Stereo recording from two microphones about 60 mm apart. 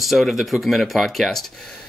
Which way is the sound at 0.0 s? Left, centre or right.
Centre.